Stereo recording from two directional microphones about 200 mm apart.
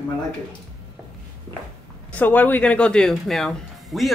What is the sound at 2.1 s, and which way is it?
Speech, 10° left (ahead or behind).